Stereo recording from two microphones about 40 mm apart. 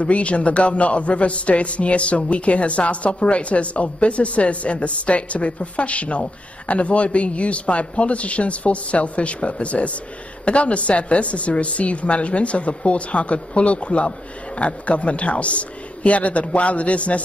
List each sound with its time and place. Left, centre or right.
0.0 s a man's voice: left